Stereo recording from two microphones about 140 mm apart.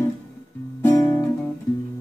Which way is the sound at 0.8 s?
20° left (ahead or behind).